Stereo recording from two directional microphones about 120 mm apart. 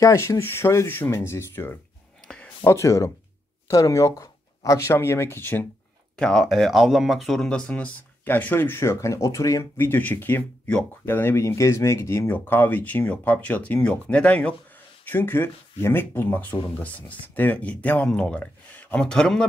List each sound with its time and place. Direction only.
0.0 s speech: 25° left (ahead or behind)
2.2 s a sound: 10° left (ahead or behind)
2.6 s speech: 25° left (ahead or behind)
6.1 s speech: 5° left (ahead or behind)